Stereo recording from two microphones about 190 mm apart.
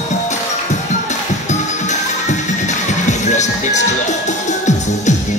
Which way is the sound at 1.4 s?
40° left (ahead or behind).